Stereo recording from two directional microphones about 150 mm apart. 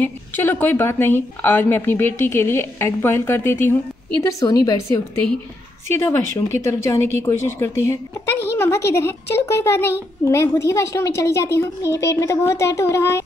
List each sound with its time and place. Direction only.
0.0 s a child's voice: 15° left (ahead or behind)